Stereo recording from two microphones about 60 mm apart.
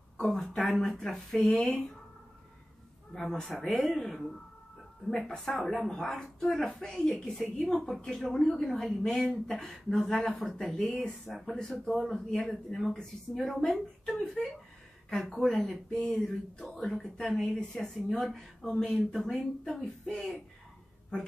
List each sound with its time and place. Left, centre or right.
0.2 s speech: centre
3.2 s speech: centre
16.0 s a sound: centre
16.6 s speech: centre